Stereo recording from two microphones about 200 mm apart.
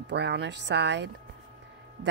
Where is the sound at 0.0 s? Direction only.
60° right (ahead or behind).